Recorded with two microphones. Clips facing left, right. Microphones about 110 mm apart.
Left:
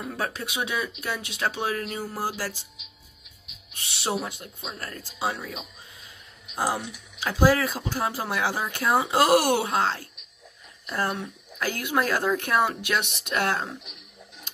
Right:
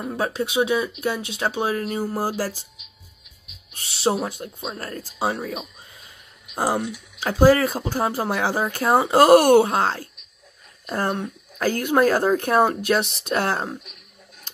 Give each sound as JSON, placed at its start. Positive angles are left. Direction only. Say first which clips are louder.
{"t": 0.0, "sound": "speech", "louder": "right 6 dB", "side_deg": -25}
{"t": 3.7, "sound": "speech", "louder": "right 6 dB", "side_deg": -35}
{"t": 5.3, "sound": "speech", "louder": "right 6 dB", "side_deg": -50}